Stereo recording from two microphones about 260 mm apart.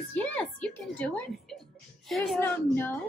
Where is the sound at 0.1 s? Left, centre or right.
Centre.